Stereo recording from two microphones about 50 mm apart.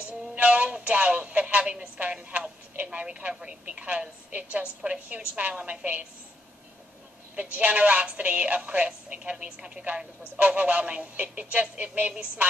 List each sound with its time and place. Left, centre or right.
0.4 s a woman's voice: right
7.3 s a woman's voice: right